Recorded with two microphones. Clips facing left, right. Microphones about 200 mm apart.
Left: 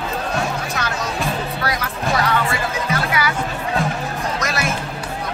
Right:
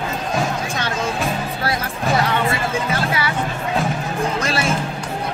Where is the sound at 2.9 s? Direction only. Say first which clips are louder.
Even; 30° right (ahead or behind).